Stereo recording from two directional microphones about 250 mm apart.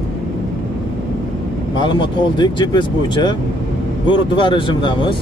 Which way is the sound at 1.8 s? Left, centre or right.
Centre.